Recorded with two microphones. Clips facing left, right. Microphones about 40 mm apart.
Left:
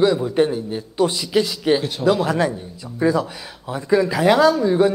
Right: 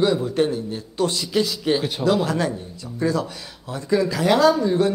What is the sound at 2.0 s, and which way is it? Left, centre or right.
A man's voice, centre.